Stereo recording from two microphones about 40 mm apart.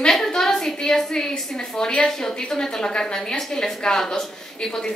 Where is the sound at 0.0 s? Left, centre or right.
Centre.